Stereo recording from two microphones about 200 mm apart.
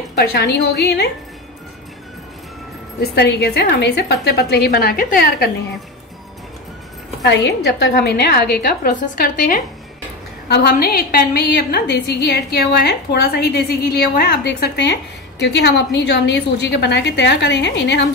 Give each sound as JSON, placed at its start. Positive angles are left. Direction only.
{"t": 0.1, "sound": "a woman's voice", "side_deg": 55}
{"t": 3.2, "sound": "a woman's voice", "side_deg": 55}
{"t": 7.2, "sound": "a woman's voice", "side_deg": 60}
{"t": 10.5, "sound": "a woman's voice", "side_deg": 55}